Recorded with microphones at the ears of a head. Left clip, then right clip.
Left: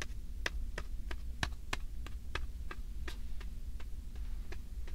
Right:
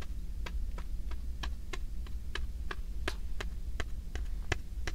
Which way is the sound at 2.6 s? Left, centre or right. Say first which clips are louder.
Right 9 dB; right.